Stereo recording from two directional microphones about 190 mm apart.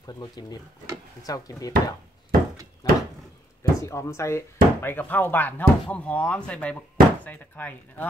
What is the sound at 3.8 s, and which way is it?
Speech, 15° left (ahead or behind).